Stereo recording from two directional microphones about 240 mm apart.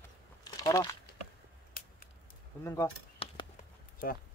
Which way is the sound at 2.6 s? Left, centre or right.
Centre.